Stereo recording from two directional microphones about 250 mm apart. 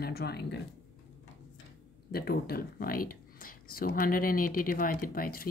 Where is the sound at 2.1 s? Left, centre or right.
Left.